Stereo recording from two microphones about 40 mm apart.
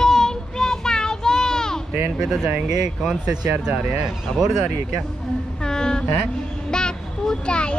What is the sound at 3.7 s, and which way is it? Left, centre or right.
Speech, right.